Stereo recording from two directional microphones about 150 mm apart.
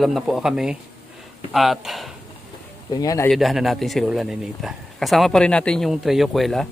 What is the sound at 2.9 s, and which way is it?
Speech, 25° left (ahead or behind).